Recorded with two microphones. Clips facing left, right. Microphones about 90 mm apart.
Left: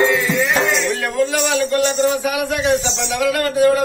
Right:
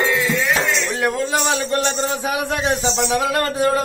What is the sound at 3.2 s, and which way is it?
Music, 30° right (ahead or behind).